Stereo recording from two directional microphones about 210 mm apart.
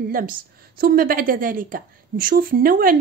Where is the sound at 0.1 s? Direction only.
45° right (ahead or behind).